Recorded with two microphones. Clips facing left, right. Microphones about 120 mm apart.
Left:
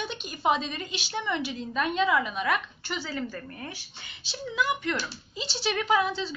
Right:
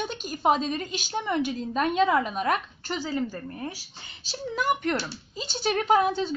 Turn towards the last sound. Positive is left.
turn(degrees=-45)  # may be behind; listen again after turning